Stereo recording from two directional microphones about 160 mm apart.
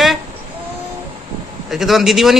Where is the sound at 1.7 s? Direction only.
Centre (ahead or behind).